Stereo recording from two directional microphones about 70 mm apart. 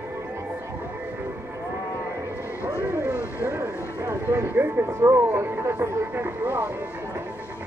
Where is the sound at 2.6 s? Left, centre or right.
Right.